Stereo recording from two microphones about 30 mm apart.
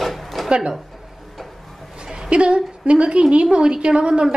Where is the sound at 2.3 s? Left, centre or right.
Right.